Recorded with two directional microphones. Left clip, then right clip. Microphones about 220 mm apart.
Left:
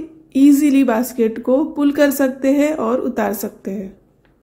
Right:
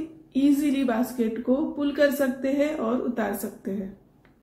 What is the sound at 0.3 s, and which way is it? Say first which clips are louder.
A woman's voice: left 10 dB; 50° left (ahead or behind).